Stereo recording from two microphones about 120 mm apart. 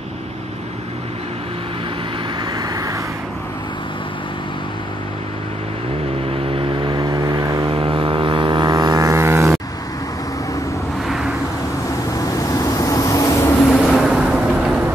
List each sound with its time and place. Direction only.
2.5 s vehicle: 30° right (ahead or behind)
6.3 s vehicle: 55° right (ahead or behind)
7.0 s vehicle: 40° right (ahead or behind)
7.7 s vehicle: 45° right (ahead or behind); by 9.5 s 25° right (ahead or behind)
11.1 s a sound: 5° right (ahead or behind)
12.1 s vehicle: 30° left (ahead or behind)
13.7 s vehicle: 5° left (ahead or behind)